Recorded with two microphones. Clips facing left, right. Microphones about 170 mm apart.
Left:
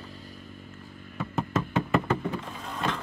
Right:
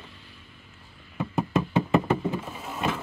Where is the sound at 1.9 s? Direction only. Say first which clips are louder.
Right 3 dB; 20° right (ahead or behind).